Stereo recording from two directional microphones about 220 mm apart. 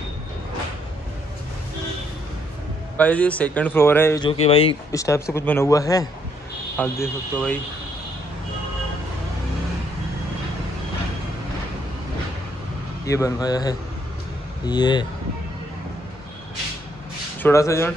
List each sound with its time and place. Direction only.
3.0 s speech: 5° left (ahead or behind)
4.2 s speech: 25° left (ahead or behind)
4.9 s speech: 15° left (ahead or behind)
13.0 s speech: 15° left (ahead or behind)
17.4 s speech: 10° left (ahead or behind)